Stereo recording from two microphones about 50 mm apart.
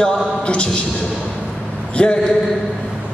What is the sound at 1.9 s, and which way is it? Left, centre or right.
Speech, centre.